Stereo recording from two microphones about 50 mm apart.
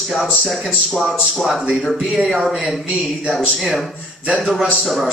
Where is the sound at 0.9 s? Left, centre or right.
Centre.